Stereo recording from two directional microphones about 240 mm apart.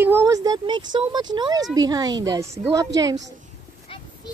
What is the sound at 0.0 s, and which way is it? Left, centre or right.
Speech, centre.